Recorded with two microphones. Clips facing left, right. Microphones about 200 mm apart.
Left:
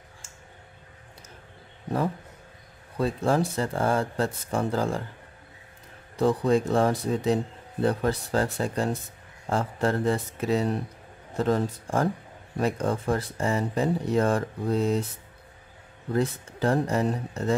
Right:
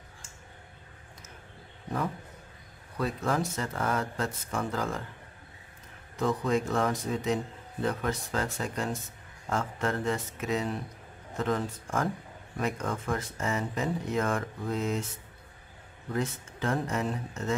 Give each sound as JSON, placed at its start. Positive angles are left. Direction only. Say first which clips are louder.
{"t": 3.0, "sound": "speech", "louder": "left 5 dB", "side_deg": 30}
{"t": 6.1, "sound": "speech", "louder": "left 5 dB", "side_deg": 35}
{"t": 16.1, "sound": "speech", "louder": "left 6 dB", "side_deg": 35}